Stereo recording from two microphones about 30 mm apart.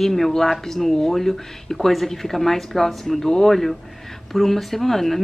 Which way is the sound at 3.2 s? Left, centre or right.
Left.